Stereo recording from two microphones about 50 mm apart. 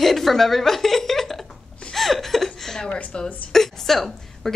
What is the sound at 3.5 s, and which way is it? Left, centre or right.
Speech, centre.